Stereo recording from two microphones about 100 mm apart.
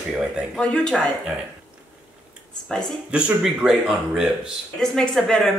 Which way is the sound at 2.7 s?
10° left (ahead or behind).